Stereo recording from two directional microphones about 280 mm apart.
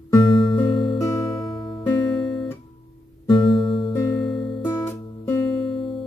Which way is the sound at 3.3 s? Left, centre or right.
Centre.